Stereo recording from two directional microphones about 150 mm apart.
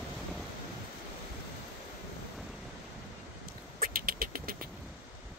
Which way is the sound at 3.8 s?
75° right (ahead or behind).